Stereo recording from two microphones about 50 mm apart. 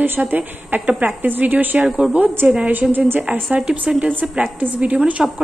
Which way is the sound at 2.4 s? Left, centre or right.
Right.